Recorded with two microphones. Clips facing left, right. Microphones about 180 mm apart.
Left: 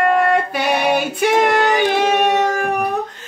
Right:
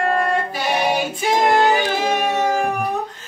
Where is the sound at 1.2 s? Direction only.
65° left (ahead or behind).